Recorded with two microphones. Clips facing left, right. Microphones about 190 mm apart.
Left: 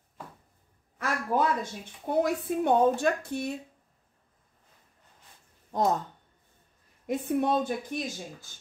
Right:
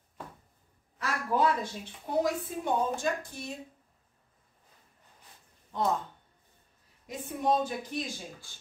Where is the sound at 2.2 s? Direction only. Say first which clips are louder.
Left 4 dB; 60° left (ahead or behind).